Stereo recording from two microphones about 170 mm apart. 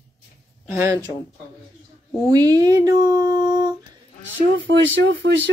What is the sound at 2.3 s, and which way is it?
A woman's voice, 25° right (ahead or behind).